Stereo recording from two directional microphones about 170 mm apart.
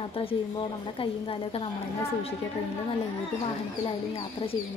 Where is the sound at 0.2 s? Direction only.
35° left (ahead or behind).